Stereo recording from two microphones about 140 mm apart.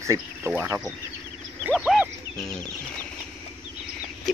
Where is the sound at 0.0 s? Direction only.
20° right (ahead or behind).